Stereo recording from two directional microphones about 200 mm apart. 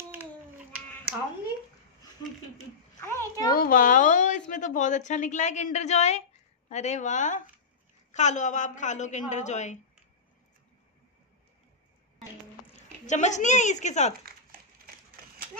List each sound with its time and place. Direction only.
3.0 s a child's voice: 15° left (ahead or behind)
3.5 s a woman's voice: 45° left (ahead or behind)
13.0 s a woman's voice: 35° left (ahead or behind)